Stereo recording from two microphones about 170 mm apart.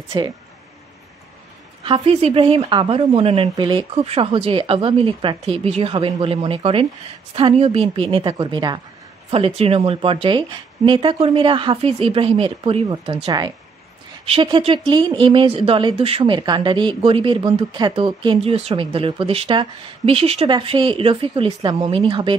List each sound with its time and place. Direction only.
0.1 s a woman's voice: 30° right (ahead or behind)
1.9 s a woman's voice: 35° right (ahead or behind)